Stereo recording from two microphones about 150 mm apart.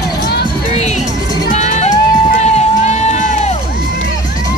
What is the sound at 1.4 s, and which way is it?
Run, 50° left (ahead or behind).